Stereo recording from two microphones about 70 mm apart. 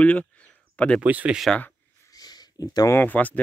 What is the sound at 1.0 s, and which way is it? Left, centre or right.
Speech, right.